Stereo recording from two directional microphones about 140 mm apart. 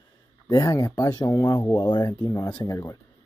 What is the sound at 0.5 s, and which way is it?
Speech, 25° left (ahead or behind).